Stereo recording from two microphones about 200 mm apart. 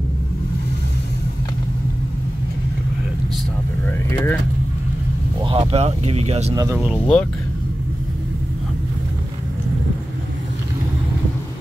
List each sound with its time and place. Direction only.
3.8 s vehicle: 10° left (ahead or behind)
5.4 s speech: 25° right (ahead or behind)
6.5 s speech: 15° right (ahead or behind)
6.8 s speech: centre (ahead or behind)